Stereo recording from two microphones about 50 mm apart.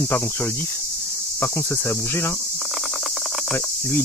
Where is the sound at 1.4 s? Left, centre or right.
Left.